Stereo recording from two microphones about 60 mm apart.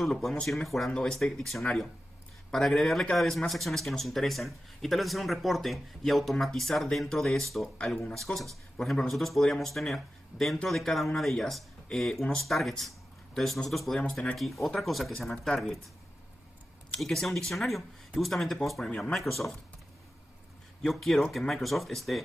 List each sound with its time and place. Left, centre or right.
0.0 s speech: centre
7.7 s speech: centre
14.3 s speech: centre
17.0 s speech: centre
18.9 s speech: centre
19.1 s speech: centre
20.8 s speech: centre